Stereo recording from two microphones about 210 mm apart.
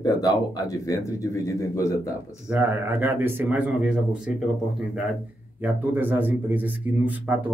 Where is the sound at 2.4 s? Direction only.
5° right (ahead or behind).